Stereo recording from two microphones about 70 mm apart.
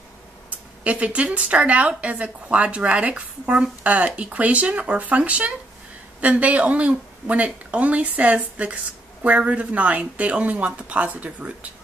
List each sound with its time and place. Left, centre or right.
0.8 s speech: centre